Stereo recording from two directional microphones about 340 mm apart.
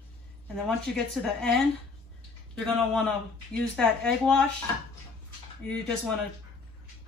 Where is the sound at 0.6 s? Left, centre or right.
Centre.